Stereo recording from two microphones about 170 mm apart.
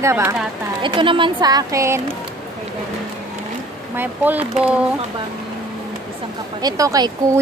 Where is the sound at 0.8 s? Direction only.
30° right (ahead or behind).